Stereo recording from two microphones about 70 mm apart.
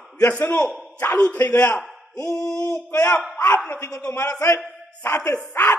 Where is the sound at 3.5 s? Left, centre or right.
Left.